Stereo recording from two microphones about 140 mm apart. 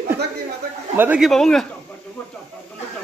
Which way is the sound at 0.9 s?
15° right (ahead or behind).